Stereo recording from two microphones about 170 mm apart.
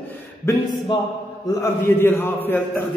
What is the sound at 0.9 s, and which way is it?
Speech, 30° left (ahead or behind).